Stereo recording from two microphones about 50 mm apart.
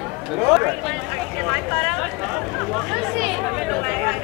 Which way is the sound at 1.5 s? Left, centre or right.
Centre.